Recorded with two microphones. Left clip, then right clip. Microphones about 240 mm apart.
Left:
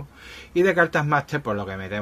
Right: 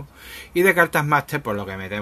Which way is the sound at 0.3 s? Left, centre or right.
Centre.